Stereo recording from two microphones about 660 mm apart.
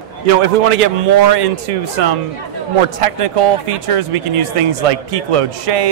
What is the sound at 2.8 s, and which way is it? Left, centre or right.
A man's voice, right.